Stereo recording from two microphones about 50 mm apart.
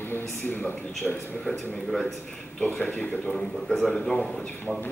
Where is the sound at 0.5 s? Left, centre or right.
Left.